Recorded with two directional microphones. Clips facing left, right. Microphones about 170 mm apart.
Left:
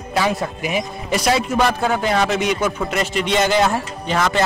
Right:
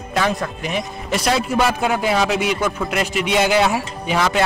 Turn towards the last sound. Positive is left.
turn(degrees=-5)  # may be behind; listen again after turning